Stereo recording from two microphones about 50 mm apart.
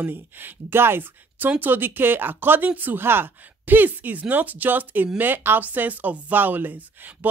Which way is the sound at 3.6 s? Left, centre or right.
Right.